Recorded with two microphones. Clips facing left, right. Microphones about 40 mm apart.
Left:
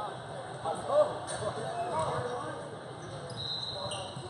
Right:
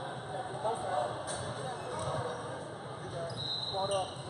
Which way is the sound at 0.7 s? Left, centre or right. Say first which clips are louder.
Left 6 dB; centre.